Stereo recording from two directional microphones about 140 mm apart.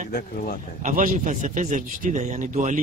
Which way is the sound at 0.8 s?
70° right (ahead or behind).